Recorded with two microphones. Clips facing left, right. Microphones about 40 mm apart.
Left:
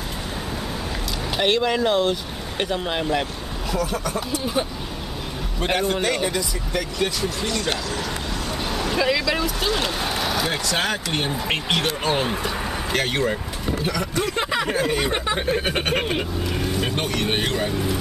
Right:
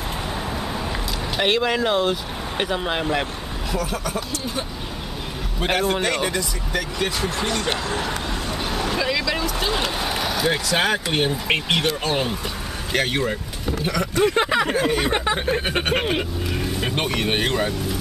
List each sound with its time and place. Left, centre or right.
1.4 s speech: centre
5.6 s speech: centre
7.2 s speech: right
8.6 s vehicle: centre
9.0 s speech: centre
10.7 s speech: centre
11.8 s speech: centre
14.2 s speech: centre
16.9 s speech: centre